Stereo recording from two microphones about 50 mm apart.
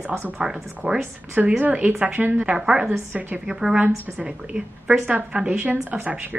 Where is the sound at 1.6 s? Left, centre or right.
Right.